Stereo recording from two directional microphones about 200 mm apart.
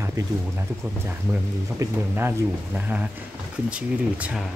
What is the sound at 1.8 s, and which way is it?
Speech, 10° right (ahead or behind).